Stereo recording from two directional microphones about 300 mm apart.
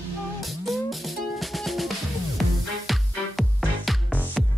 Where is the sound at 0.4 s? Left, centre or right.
Centre.